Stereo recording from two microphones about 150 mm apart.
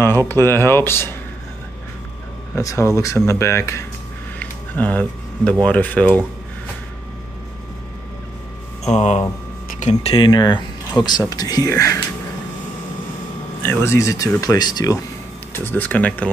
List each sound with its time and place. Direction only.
0.3 s speech: 15° left (ahead or behind)
2.5 s speech: 20° left (ahead or behind)
8.9 s speech: 50° left (ahead or behind)
10.1 s speech: 30° left (ahead or behind)
13.6 s speech: 15° left (ahead or behind)
15.5 s speech: 15° left (ahead or behind)